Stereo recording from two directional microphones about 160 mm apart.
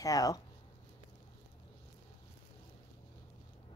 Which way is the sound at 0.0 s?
20° left (ahead or behind).